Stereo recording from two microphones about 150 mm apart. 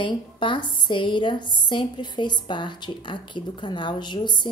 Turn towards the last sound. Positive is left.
turn(degrees=30)  # may be behind; listen again after turning